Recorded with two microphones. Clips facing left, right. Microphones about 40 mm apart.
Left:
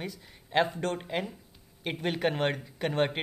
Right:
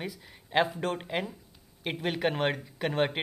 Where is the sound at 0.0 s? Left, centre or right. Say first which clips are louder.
Right 1 dB; centre.